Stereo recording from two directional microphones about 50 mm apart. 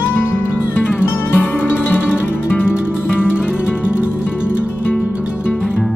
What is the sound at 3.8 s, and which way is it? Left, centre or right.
Music, right.